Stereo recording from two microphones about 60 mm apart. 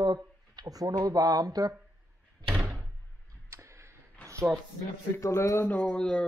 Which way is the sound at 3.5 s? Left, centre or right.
Right.